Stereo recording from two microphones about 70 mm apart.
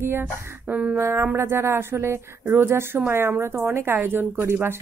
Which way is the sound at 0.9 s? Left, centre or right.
Right.